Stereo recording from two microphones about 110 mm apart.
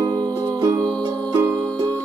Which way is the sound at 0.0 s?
40° right (ahead or behind).